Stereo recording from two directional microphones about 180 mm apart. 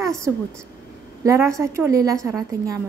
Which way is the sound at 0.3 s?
15° right (ahead or behind).